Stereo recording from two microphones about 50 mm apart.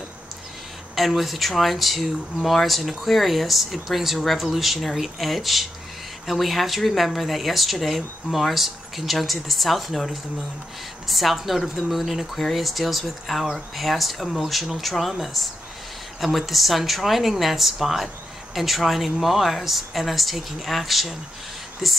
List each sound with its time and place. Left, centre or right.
0.9 s speech: centre